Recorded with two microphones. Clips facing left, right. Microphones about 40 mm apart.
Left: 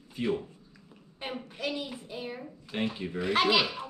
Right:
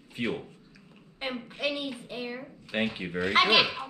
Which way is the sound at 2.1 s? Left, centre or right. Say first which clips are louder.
Right 2 dB; right.